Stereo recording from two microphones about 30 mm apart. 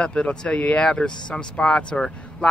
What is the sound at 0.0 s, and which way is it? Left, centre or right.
Speech, left.